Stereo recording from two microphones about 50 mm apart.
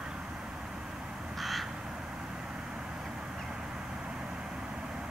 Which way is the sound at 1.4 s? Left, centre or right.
Centre.